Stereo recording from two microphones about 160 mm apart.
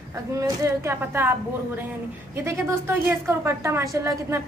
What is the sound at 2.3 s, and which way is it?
A woman's voice, 15° right (ahead or behind).